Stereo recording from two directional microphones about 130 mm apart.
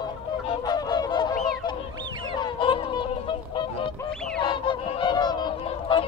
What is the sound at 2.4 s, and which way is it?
Fowl, 40° left (ahead or behind).